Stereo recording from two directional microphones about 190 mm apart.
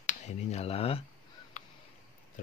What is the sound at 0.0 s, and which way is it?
Speech, 35° left (ahead or behind).